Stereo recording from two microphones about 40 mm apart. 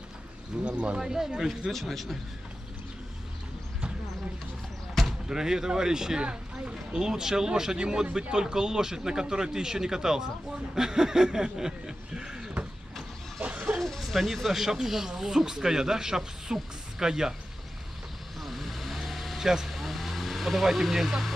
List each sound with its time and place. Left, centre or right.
0.7 s speech: right
0.9 s speech: centre
1.7 s a man's voice: centre
5.0 s basketball bounce: centre
5.3 s speech: centre
13.7 s speech: centre
18.4 s vehicle: centre
19.4 s speech: centre
19.8 s vehicle: centre